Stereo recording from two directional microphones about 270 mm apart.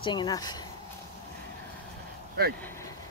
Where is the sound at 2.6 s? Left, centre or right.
Centre.